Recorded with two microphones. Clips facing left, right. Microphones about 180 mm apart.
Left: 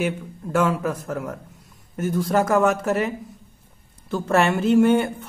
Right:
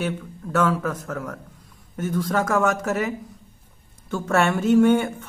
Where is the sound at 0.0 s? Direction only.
10° left (ahead or behind).